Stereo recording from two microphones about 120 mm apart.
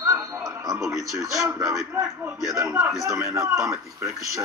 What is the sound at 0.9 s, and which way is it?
A man's voice, 25° right (ahead or behind).